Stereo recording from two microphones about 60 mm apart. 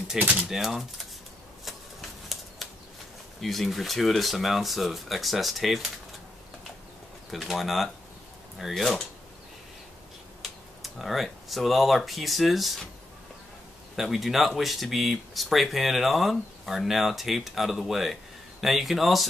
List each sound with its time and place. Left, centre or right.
0.2 s speech: right
0.5 s speech: centre
1.6 s typewriter: centre
3.3 s speech: centre
7.2 s speech: centre
10.4 s speech: centre
13.9 s speech: centre